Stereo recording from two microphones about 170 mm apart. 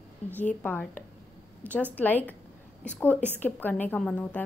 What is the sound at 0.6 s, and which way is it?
Speech, 10° left (ahead or behind).